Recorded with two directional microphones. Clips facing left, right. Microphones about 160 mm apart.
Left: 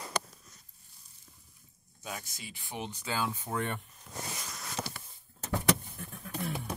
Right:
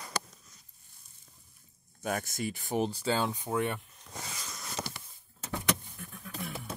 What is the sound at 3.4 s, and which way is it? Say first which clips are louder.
Speech: right 3 dB; 10° right (ahead or behind).